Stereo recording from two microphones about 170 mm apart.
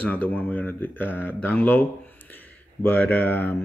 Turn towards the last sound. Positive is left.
turn(degrees=10)  # may be behind; listen again after turning